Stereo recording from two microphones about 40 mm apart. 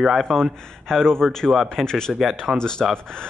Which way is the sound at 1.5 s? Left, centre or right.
Centre.